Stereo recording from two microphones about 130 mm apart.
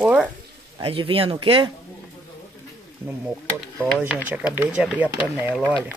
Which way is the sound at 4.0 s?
15° right (ahead or behind).